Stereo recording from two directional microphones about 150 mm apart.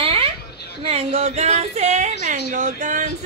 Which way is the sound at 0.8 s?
40° right (ahead or behind).